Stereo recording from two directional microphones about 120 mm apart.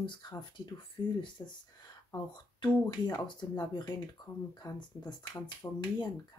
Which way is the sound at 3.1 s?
35° left (ahead or behind).